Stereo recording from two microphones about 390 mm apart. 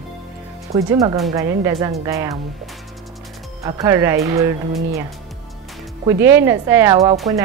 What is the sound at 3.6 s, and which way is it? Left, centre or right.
Speech, centre.